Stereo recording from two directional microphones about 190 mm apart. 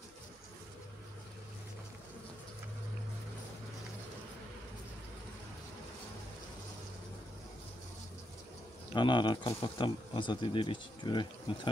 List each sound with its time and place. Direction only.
8.9 s speech: 25° left (ahead or behind)